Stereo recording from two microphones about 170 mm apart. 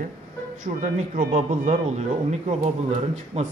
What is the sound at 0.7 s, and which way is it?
A man's voice, 45° right (ahead or behind).